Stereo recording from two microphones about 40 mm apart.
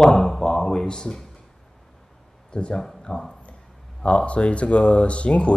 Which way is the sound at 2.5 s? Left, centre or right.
Left.